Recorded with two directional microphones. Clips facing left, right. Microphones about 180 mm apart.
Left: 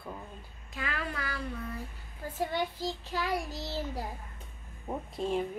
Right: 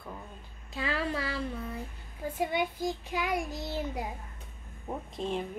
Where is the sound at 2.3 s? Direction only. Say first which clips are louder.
Right 1 dB; 15° right (ahead or behind).